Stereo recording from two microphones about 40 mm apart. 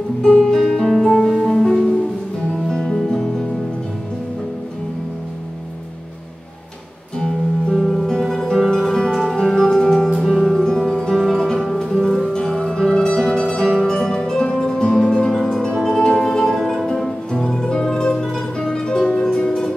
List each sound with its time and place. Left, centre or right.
0.2 s music: centre
7.2 s music: centre
16.5 s music: centre